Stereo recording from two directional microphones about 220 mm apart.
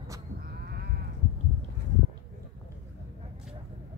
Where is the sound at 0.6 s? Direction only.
45° right (ahead or behind).